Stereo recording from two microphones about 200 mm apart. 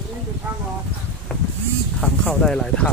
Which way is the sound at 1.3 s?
5° left (ahead or behind).